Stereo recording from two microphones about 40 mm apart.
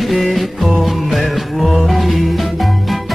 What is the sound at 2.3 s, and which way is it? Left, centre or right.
Music, centre.